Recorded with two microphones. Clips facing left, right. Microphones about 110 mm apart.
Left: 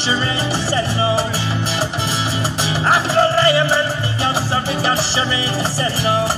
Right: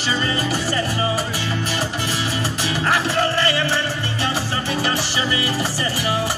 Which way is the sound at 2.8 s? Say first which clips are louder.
Left 5 dB; 35° left (ahead or behind).